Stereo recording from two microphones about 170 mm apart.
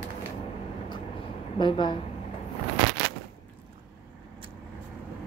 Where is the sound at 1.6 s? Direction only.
30° left (ahead or behind).